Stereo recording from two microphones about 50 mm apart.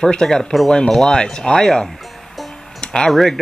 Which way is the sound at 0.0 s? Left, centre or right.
Centre.